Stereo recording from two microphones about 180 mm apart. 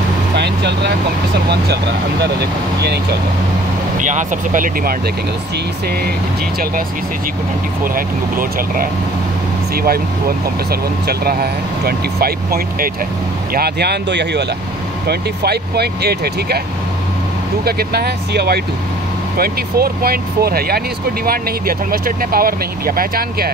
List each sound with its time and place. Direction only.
0.4 s vehicle: 70° right (ahead or behind)
2.8 s speech: 65° right (ahead or behind)
4.0 s speech: 45° right (ahead or behind)
7.8 s speech: 50° right (ahead or behind)
17.6 s speech: 60° right (ahead or behind)